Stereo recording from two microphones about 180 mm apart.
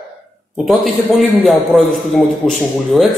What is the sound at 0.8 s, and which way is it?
Speech, centre (ahead or behind).